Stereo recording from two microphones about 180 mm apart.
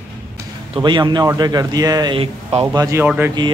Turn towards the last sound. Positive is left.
turn(degrees=-5)  # may be behind; listen again after turning